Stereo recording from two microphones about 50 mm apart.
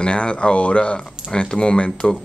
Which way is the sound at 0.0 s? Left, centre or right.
Centre.